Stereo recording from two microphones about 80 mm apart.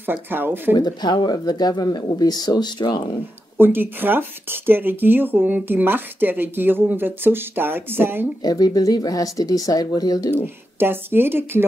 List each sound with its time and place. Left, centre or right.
0.0 s speech: right
0.7 s speech: left
3.5 s speech: right
8.4 s speech: left
10.8 s speech: right